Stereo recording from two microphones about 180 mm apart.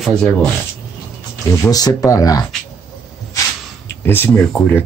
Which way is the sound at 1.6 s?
20° left (ahead or behind).